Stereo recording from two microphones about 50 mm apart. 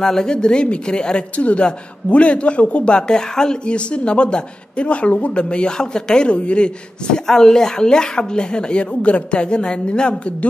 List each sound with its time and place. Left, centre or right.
0.0 s speech: centre
7.2 s speech: centre